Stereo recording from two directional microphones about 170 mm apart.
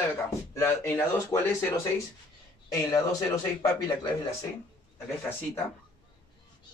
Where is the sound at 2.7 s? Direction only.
20° left (ahead or behind).